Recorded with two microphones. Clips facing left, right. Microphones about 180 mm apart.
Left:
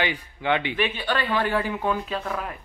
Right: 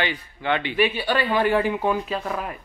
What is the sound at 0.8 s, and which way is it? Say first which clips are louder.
Speech: right 4 dB; 10° right (ahead or behind).